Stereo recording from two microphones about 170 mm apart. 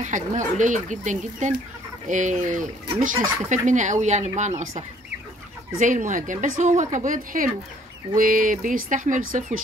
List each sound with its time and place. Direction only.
0.0 s speech: 45° right (ahead or behind)